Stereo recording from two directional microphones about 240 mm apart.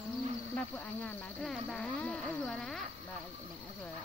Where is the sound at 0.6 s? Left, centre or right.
Centre.